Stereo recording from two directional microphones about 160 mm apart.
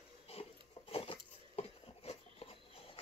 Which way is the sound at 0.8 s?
35° left (ahead or behind).